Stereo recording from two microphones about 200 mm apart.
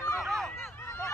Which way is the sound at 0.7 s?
10° left (ahead or behind).